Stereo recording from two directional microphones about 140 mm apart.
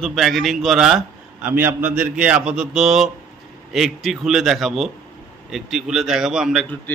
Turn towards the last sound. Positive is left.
turn(degrees=0)  # may be behind; listen again after turning